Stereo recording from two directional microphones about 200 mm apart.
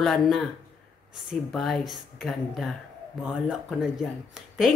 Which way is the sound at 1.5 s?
Centre (ahead or behind).